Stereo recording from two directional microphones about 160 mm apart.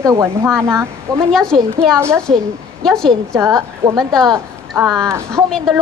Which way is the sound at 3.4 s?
15° right (ahead or behind).